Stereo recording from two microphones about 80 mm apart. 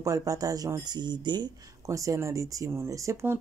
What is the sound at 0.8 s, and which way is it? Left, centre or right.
Speech, right.